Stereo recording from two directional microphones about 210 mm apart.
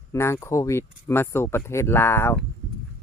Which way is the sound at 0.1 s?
15° left (ahead or behind).